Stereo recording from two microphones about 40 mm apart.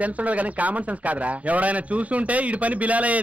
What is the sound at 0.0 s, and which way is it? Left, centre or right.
Speech, right.